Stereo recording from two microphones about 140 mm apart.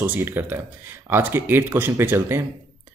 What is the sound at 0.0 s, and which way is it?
Speech, 15° right (ahead or behind).